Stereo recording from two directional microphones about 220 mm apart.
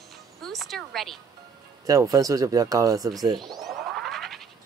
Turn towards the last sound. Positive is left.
turn(degrees=0)  # may be behind; listen again after turning